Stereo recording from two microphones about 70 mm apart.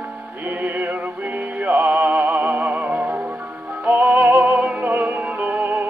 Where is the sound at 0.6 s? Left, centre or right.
Right.